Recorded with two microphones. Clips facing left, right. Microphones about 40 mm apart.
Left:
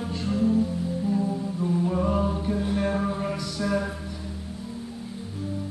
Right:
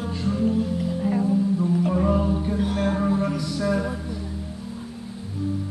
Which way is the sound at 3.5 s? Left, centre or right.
Centre.